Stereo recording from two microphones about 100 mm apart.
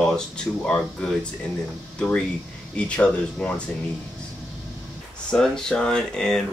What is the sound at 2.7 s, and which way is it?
Speech, 10° left (ahead or behind).